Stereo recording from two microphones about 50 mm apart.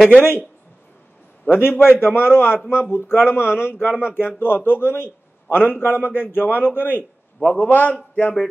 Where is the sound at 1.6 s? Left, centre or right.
Left.